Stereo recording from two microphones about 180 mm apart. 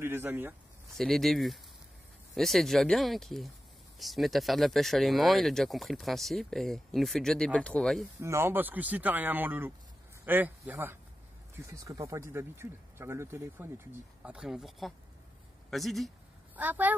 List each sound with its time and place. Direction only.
0.0 s speech: 10° right (ahead or behind)
0.9 s speech: centre (ahead or behind)
8.2 s speech: 15° right (ahead or behind)
14.2 s speech: 5° right (ahead or behind)